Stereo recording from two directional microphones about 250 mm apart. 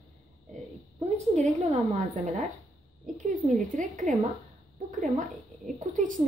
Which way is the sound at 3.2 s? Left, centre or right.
Right.